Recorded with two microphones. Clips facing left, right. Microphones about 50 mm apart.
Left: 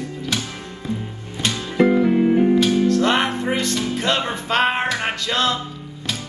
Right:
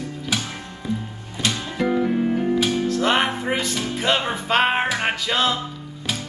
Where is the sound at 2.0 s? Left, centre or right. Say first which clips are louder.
Left 5 dB; left.